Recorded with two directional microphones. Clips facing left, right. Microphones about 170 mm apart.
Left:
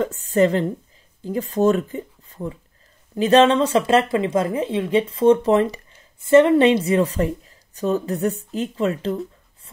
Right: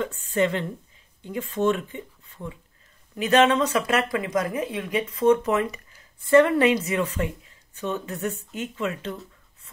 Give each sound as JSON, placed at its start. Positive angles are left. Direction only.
{"t": 0.0, "sound": "speech", "side_deg": 40}